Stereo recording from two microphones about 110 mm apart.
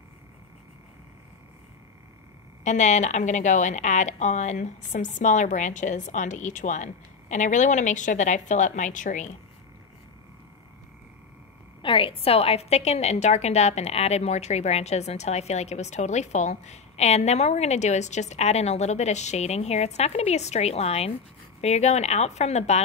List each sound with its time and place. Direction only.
2.6 s speech: 90° left
11.8 s a woman's voice: 50° left (ahead or behind); by 21.1 s 70° left (ahead or behind)
21.5 s a woman's voice: 85° left